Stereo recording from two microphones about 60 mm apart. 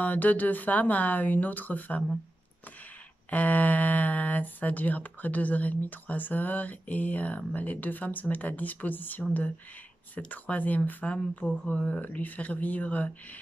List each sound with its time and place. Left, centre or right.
0.0 s speech: left
3.3 s speech: left